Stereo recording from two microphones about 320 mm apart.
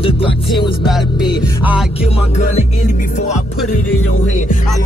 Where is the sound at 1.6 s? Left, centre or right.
Centre.